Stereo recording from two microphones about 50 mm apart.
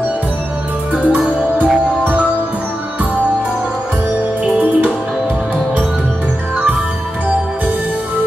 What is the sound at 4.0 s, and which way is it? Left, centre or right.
Music, right.